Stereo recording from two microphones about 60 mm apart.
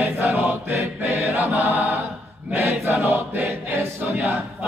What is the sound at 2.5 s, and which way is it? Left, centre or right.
Choir, right.